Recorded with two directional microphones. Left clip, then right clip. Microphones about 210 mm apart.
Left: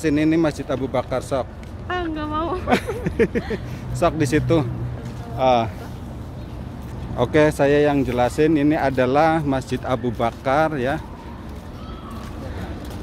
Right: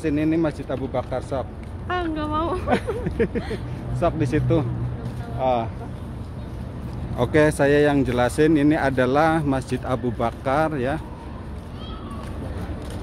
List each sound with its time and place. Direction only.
0.0 s speech: 45° left (ahead or behind)
1.9 s speech: 5° right (ahead or behind)
3.0 s speech: 45° left (ahead or behind)
7.2 s speech: 10° left (ahead or behind)